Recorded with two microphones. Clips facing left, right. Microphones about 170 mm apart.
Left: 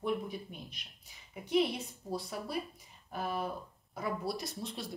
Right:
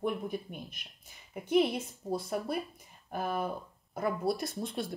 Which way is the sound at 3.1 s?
50° right (ahead or behind).